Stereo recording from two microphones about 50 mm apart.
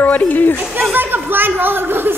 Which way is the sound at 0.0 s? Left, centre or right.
Left.